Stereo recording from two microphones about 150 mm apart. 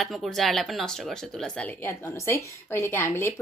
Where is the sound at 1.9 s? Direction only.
20° left (ahead or behind).